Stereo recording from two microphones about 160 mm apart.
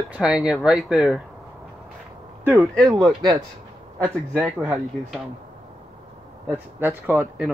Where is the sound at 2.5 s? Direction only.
Centre (ahead or behind).